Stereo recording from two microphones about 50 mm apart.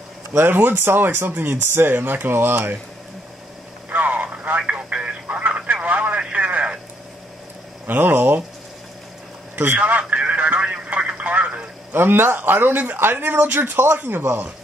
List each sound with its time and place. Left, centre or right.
0.3 s speech: right
3.9 s telephone: right
7.8 s speech: right
9.8 s a sound: right
11.9 s speech: right